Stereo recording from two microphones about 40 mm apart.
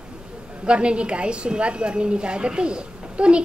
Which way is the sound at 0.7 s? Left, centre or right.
Right.